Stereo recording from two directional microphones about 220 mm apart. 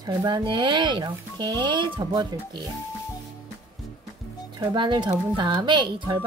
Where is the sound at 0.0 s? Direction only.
20° right (ahead or behind).